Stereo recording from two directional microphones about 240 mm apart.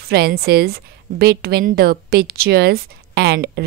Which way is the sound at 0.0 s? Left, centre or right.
Right.